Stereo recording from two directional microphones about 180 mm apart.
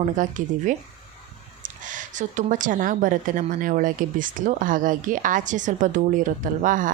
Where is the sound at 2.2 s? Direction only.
45° right (ahead or behind).